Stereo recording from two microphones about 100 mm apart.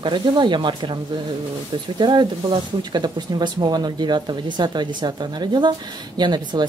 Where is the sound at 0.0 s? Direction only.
50° right (ahead or behind).